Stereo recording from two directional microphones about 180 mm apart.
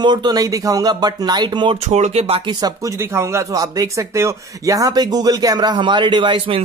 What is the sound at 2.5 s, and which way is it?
Speech, 20° right (ahead or behind).